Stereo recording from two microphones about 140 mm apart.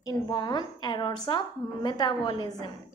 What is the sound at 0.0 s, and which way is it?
A woman's voice, 30° left (ahead or behind).